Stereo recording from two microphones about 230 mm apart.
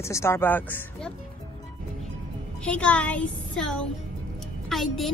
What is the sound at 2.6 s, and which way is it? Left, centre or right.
A woman's voice, centre.